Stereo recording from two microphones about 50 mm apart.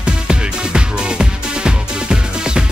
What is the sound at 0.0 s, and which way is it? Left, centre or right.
Music, centre.